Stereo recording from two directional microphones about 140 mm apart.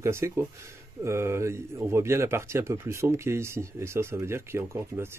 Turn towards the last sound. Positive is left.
turn(degrees=-15)  # may be behind; listen again after turning